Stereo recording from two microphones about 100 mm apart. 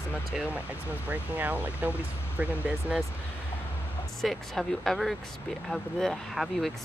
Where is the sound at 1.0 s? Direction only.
15° right (ahead or behind).